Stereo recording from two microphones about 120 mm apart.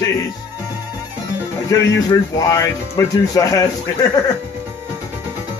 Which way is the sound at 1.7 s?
30° left (ahead or behind).